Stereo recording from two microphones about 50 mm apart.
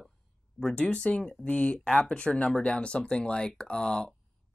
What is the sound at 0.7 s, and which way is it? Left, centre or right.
Speech, left.